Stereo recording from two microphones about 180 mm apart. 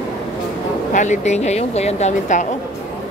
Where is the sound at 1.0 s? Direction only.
40° left (ahead or behind).